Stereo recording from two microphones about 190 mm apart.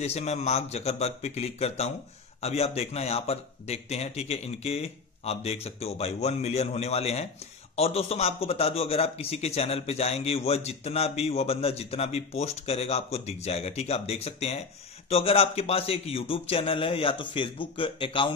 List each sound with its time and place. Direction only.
0.0 s a man's voice: 35° left (ahead or behind)